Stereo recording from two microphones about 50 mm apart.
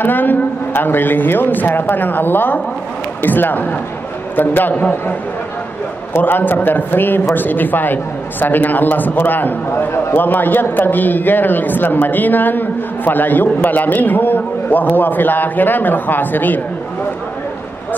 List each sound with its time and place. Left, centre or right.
0.0 s a man's voice: left
6.1 s a man's voice: left